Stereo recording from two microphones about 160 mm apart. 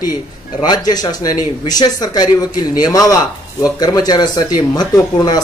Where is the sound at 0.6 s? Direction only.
25° left (ahead or behind).